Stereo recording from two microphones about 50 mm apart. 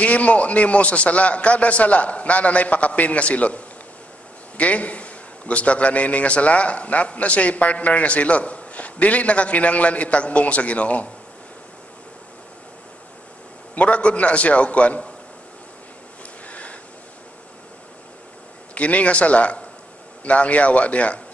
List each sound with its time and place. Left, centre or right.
0.0 s a man's voice: left
13.7 s a man's voice: left
16.4 s a sound: left
18.8 s a man's voice: left